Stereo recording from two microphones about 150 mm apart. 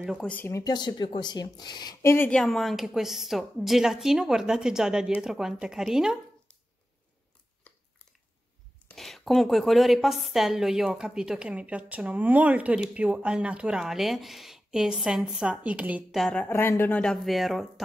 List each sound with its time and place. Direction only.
0.2 s speech: 10° left (ahead or behind)
0.5 s speech: 25° left (ahead or behind)
2.0 s speech: 15° left (ahead or behind)
2.4 s a woman's voice: centre (ahead or behind)
8.9 s a woman's voice: centre (ahead or behind)
16.2 s a woman's voice: 5° left (ahead or behind)